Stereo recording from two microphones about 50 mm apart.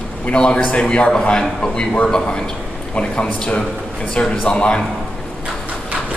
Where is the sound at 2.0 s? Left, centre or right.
Centre.